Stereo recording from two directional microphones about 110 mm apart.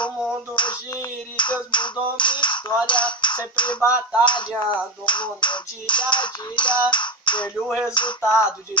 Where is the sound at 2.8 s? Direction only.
45° left (ahead or behind).